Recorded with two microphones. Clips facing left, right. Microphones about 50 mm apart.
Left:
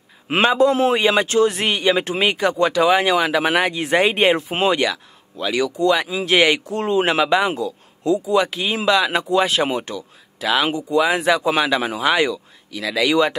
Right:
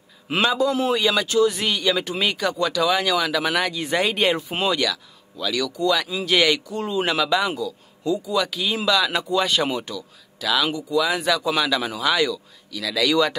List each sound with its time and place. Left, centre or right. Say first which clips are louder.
0.3 s speech: left 5 dB; left
6.7 s speech: left 6 dB; left
7.0 s speech: left 3 dB; left